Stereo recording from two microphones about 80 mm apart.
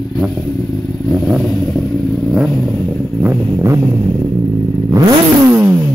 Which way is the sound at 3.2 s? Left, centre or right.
Right.